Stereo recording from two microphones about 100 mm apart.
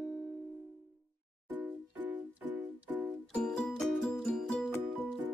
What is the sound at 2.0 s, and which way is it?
Music, 15° right (ahead or behind).